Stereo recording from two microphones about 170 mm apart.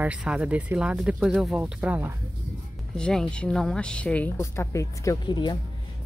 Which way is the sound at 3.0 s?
5° left (ahead or behind).